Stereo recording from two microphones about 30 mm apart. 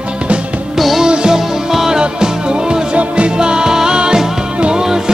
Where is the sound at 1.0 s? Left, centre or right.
Right.